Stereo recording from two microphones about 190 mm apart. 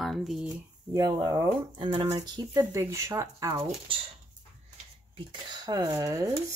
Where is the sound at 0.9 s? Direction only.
20° right (ahead or behind).